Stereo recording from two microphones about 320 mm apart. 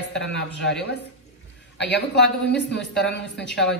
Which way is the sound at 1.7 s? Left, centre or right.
Left.